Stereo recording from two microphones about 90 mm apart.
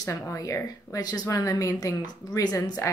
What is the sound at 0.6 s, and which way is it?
A woman's voice, 45° left (ahead or behind).